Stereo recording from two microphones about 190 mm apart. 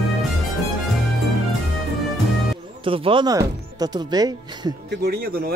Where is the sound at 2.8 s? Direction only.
30° right (ahead or behind).